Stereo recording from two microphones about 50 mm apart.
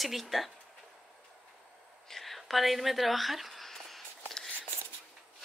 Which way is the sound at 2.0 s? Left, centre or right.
Centre.